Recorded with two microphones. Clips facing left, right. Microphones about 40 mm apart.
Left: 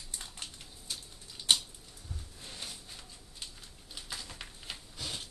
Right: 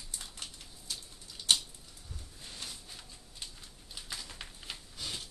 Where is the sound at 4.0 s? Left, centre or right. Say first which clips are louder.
Even; centre.